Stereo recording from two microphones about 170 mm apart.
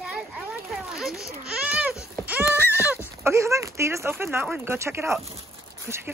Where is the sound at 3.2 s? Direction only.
15° right (ahead or behind).